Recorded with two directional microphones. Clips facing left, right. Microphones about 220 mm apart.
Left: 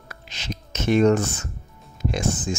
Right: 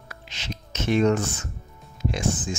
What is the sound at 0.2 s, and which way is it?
Speech, 40° left (ahead or behind).